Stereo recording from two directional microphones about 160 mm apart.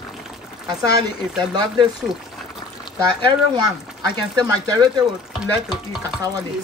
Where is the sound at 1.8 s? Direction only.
Centre (ahead or behind).